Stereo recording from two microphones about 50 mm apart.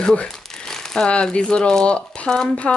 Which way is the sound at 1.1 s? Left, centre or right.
Centre.